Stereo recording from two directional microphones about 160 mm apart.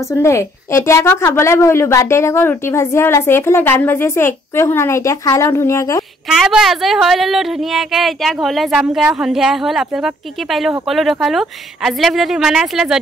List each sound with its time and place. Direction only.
0.1 s a woman's voice: 15° left (ahead or behind)
6.2 s speech: 5° right (ahead or behind)